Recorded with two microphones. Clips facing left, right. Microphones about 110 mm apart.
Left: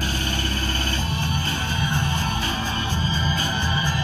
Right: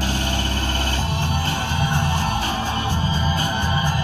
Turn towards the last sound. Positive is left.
turn(degrees=-55)  # may be behind; listen again after turning